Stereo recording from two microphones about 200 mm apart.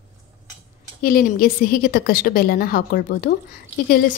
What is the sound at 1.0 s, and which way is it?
A woman's voice, 45° left (ahead or behind).